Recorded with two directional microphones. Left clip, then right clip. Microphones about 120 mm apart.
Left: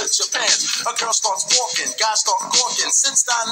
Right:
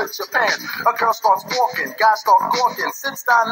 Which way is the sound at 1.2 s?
45° right (ahead or behind).